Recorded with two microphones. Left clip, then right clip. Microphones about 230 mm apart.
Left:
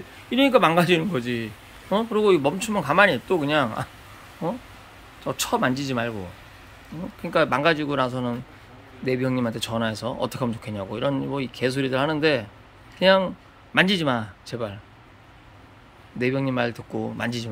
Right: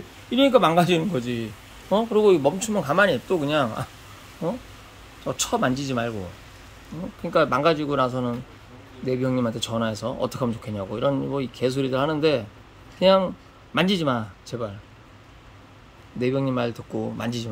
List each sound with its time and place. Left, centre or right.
0.3 s speech: centre
5.2 s speech: centre
7.2 s speech: centre
16.2 s speech: centre